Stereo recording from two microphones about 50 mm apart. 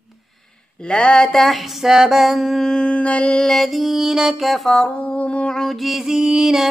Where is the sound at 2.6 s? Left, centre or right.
Centre.